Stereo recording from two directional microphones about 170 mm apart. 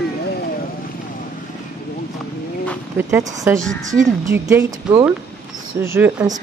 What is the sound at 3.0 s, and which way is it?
Speech, 15° right (ahead or behind).